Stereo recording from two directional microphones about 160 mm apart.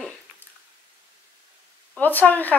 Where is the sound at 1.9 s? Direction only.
10° left (ahead or behind).